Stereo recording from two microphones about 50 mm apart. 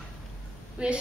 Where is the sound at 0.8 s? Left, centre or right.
Right.